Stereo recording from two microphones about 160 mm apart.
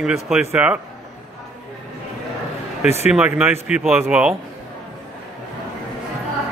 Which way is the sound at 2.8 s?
40° left (ahead or behind).